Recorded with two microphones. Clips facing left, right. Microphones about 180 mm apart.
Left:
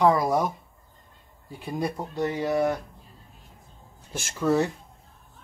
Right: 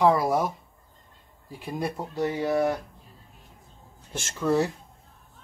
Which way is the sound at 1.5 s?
Centre (ahead or behind).